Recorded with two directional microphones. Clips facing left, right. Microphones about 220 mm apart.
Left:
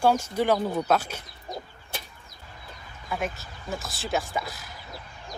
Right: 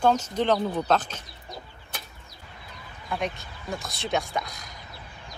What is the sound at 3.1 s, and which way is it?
Speech, 5° left (ahead or behind).